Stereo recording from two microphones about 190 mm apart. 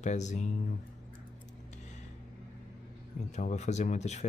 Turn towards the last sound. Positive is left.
turn(degrees=35)  # may be behind; listen again after turning